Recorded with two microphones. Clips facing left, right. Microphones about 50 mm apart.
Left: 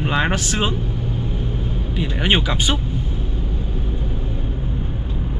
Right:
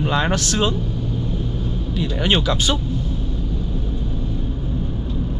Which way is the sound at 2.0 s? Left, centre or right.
Left.